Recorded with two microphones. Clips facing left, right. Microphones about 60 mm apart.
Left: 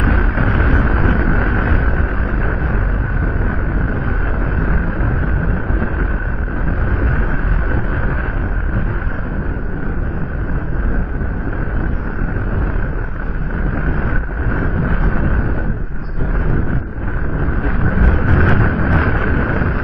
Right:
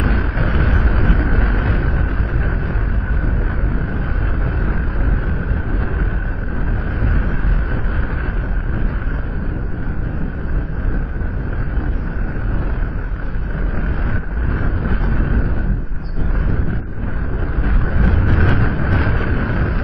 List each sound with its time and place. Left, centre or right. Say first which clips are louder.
0.0 s vehicle: left 3 dB; centre
0.6 s vehicle: left 4 dB; centre
1.3 s vehicle: left 3 dB; centre
14.5 s vehicle: left 4 dB; left
17.8 s vehicle: left 2 dB; left